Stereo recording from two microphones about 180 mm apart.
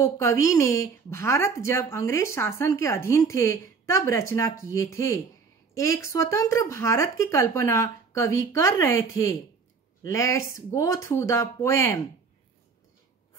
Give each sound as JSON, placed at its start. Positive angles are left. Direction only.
{"t": 0.2, "sound": "a woman's voice", "side_deg": 15}